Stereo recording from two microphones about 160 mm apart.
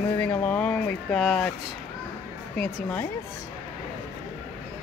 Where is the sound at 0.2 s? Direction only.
10° left (ahead or behind).